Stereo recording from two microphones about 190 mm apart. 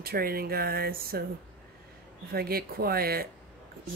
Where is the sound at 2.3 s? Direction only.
50° right (ahead or behind).